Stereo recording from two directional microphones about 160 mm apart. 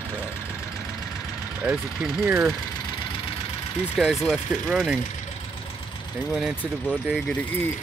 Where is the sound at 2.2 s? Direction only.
10° right (ahead or behind).